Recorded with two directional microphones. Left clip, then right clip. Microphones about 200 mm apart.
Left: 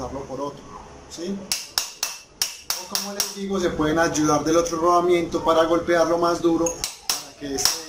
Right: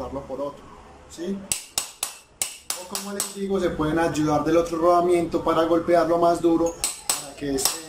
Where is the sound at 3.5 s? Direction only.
5° right (ahead or behind).